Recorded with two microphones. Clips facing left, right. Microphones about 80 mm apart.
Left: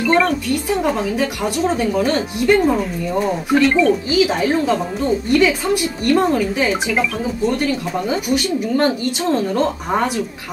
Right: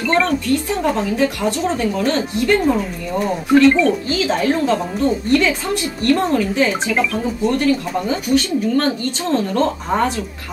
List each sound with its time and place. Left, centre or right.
0.0 s speech: centre
8.3 s speech: left